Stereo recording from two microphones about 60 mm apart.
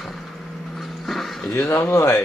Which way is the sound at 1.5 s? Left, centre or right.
Left.